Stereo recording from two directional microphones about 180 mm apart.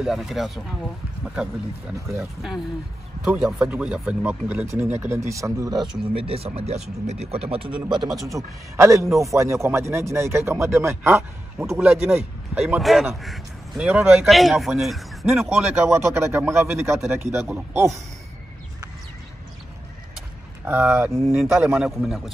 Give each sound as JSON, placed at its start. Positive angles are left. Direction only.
{"t": 0.0, "sound": "speech", "side_deg": 0}
{"t": 3.3, "sound": "speech", "side_deg": -5}
{"t": 6.1, "sound": "speech", "side_deg": -30}
{"t": 20.6, "sound": "speech", "side_deg": -10}
{"t": 21.7, "sound": "speech", "side_deg": 0}